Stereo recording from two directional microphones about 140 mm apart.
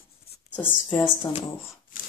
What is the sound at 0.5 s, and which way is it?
Speech, 15° left (ahead or behind).